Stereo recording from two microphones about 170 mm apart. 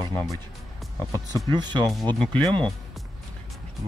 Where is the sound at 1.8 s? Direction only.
5° left (ahead or behind).